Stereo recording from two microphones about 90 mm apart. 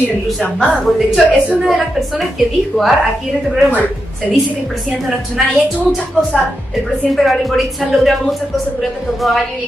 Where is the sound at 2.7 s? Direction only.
15° left (ahead or behind).